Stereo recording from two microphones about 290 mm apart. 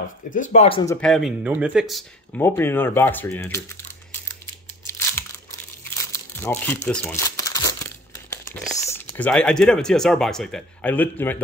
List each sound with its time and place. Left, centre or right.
0.3 s speech: left
1.0 s speech: centre
6.1 s speech: centre